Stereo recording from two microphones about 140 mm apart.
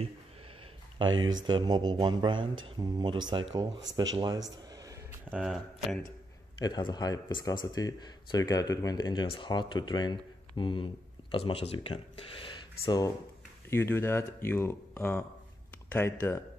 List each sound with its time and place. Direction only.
0.9 s speech: 30° right (ahead or behind)
5.3 s speech: centre (ahead or behind)
6.6 s speech: 30° left (ahead or behind)
12.8 s speech: 25° left (ahead or behind)